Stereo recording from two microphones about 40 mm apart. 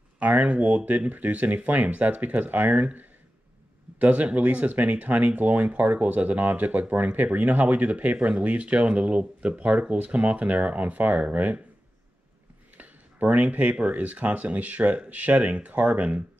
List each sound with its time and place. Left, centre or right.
0.2 s speech: right
12.7 s speech: right